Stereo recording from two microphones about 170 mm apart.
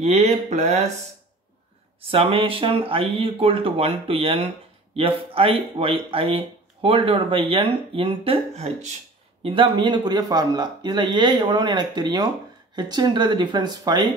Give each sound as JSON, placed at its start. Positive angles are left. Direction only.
{"t": 0.0, "sound": "speech", "side_deg": -40}
{"t": 2.0, "sound": "speech", "side_deg": -30}